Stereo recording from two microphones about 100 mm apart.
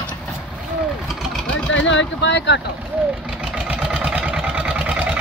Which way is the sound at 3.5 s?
10° right (ahead or behind).